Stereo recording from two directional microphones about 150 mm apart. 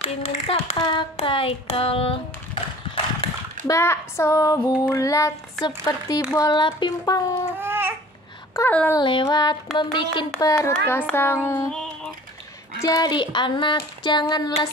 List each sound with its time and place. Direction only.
0.0 s speech: 40° left (ahead or behind)
0.7 s speech: 30° left (ahead or behind)
1.1 s a sound: 35° left (ahead or behind)
3.6 s child singing: 20° left (ahead or behind)
7.5 s babbling: 15° right (ahead or behind)
8.5 s child singing: 15° left (ahead or behind)
8.9 s speech: 35° left (ahead or behind)
10.9 s child singing: 15° left (ahead or behind)
12.8 s speech: 25° left (ahead or behind)
13.7 s child singing: 30° left (ahead or behind)